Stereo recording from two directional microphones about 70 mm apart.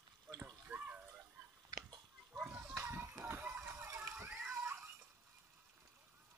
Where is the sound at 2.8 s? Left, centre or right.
Right.